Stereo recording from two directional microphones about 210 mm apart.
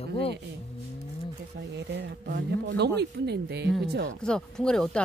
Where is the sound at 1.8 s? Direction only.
55° right (ahead or behind).